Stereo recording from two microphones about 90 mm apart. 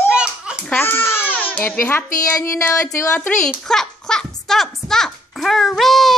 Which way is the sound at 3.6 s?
5° left (ahead or behind).